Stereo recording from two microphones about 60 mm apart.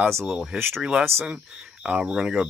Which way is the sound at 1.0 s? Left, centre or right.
Right.